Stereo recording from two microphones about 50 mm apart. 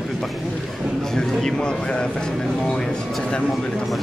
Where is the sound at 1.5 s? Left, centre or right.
Centre.